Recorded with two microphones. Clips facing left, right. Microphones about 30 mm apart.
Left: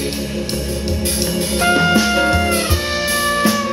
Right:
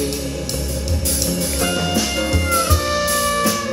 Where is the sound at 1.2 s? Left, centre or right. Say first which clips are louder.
Left 5 dB; left.